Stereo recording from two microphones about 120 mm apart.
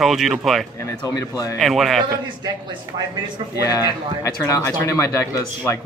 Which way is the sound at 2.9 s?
50° right (ahead or behind).